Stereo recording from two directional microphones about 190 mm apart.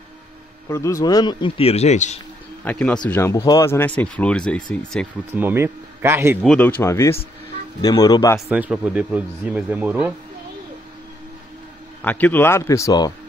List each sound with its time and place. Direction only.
0.7 s a man's voice: 15° left (ahead or behind); by 2.1 s 35° left (ahead or behind)
2.6 s speech: 5° left (ahead or behind)
5.3 s speech: 10° right (ahead or behind)
6.4 s a man's voice: 5° left (ahead or behind)
8.5 s speech: 5° right (ahead or behind)
12.0 s speech: 10° left (ahead or behind)